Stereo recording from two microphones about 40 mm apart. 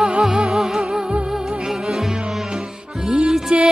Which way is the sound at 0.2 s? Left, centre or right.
Centre.